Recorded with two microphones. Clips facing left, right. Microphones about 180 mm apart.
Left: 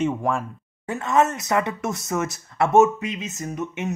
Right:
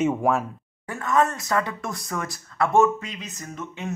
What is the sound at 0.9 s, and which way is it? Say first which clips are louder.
Speech: left 2 dB; 25° left (ahead or behind).